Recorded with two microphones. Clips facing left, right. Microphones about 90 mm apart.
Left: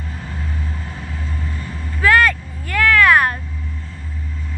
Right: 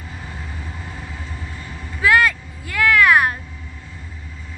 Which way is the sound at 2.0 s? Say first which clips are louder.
Left 2 dB; 15° right (ahead or behind).